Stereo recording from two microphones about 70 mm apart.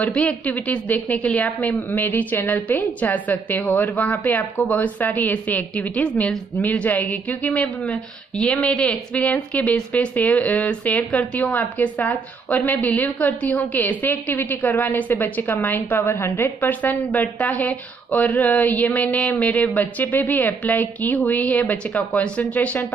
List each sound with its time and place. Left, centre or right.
0.0 s a woman's voice: centre; by 16.4 s left
16.6 s a woman's voice: left